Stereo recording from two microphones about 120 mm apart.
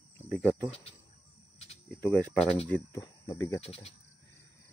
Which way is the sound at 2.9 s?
25° left (ahead or behind).